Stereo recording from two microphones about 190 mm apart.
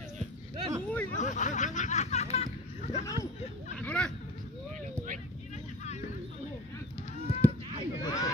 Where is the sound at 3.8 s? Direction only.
5° left (ahead or behind).